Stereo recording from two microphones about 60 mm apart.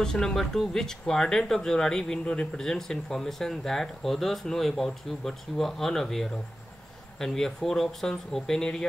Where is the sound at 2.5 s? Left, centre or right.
Centre.